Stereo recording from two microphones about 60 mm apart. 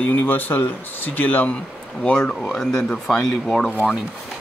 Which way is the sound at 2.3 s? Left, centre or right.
Centre.